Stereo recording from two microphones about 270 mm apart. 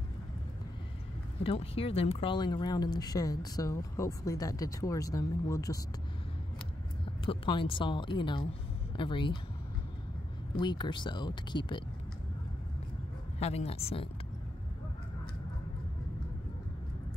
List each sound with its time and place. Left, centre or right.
1.4 s speech: left
7.2 s speech: centre
10.6 s speech: centre
13.4 s speech: left